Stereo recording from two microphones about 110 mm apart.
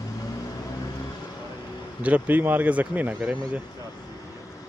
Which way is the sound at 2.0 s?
15° right (ahead or behind).